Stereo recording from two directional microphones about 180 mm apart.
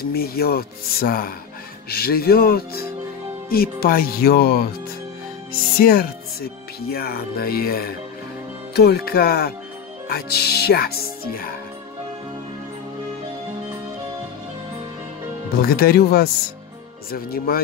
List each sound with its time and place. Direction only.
0.0 s speech: 55° left (ahead or behind)
5.8 s speech: 55° left (ahead or behind)
15.6 s speech: 55° left (ahead or behind)